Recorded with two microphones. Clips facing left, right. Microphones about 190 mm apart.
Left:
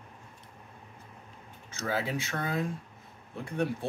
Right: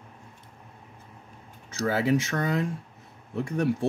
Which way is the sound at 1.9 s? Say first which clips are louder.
Right 8 dB; 75° right (ahead or behind).